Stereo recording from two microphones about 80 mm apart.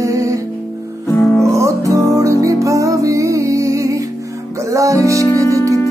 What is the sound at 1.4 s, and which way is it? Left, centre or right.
Music, right.